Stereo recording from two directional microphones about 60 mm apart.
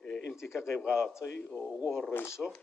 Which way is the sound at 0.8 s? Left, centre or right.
Centre.